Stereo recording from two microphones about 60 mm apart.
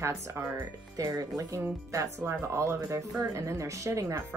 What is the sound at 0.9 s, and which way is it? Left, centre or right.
Speech, right.